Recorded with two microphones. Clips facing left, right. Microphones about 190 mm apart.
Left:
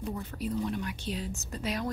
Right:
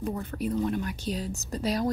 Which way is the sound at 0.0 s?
55° right (ahead or behind).